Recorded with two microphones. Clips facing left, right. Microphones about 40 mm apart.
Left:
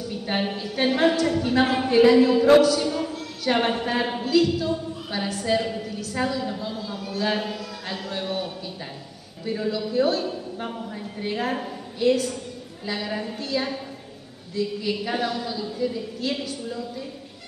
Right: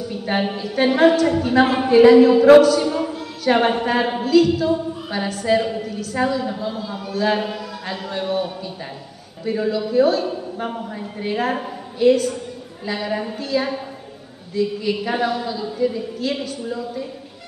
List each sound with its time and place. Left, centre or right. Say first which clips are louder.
0.1 s a woman's voice: right 4 dB; centre